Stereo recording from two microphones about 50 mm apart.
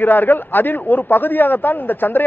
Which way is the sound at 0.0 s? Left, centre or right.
Left.